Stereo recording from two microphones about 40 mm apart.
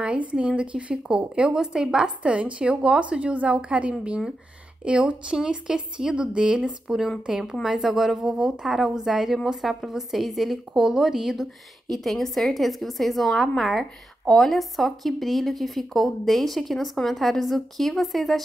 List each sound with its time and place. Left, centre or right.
0.0 s speech: right
5.4 s a woman's voice: centre
9.0 s a woman's voice: centre
11.9 s speech: centre